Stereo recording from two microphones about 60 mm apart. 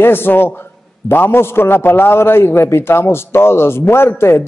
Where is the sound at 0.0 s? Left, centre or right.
Left.